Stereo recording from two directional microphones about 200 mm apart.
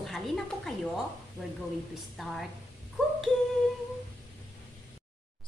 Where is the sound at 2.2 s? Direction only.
Centre (ahead or behind).